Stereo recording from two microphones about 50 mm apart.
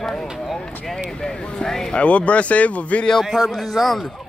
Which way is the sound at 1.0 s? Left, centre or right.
Centre.